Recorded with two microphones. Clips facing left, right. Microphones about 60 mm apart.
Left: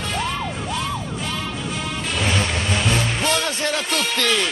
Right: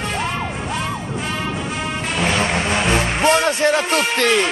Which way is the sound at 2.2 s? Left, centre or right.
Right.